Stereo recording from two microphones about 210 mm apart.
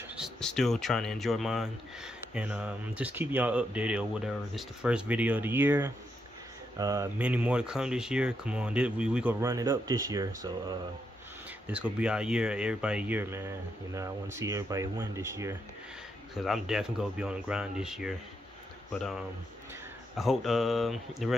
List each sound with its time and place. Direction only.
0.1 s speech: centre (ahead or behind); by 7.1 s 15° right (ahead or behind)
7.2 s speech: 5° right (ahead or behind)
11.6 s speech: 5° right (ahead or behind)
16.3 s speech: centre (ahead or behind)